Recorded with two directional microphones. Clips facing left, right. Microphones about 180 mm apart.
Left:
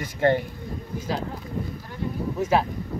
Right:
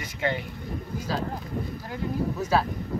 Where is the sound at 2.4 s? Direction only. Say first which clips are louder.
Left 4 dB; 20° left (ahead or behind).